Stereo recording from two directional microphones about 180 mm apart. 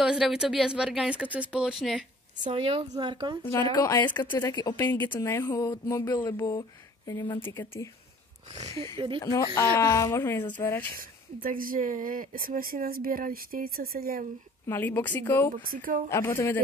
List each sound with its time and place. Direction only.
0.0 s speech: 5° right (ahead or behind)
2.5 s speech: 30° right (ahead or behind)
3.4 s speech: 15° left (ahead or behind)
8.9 s speech: 30° right (ahead or behind)
9.2 s speech: 20° left (ahead or behind)
11.4 s a woman's voice: 50° right (ahead or behind)
14.7 s speech: 10° left (ahead or behind)
15.7 s a woman's voice: 50° right (ahead or behind)
16.1 s speech: 15° left (ahead or behind)